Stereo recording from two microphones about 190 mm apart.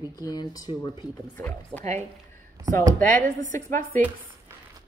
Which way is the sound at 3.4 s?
40° right (ahead or behind).